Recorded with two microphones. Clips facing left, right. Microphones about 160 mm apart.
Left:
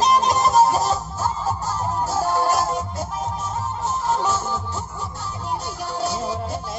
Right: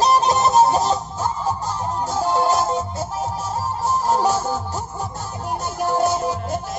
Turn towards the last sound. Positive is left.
turn(degrees=-50)  # may be behind; listen again after turning